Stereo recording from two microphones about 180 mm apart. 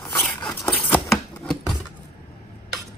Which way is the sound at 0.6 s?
Centre (ahead or behind).